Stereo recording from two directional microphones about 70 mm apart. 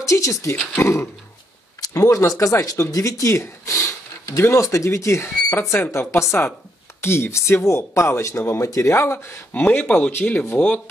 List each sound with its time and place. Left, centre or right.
0.0 s speech: left
2.0 s speech: left
9.5 s speech: left